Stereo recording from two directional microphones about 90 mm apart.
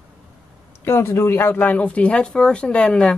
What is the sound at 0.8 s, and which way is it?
Speech, 30° left (ahead or behind).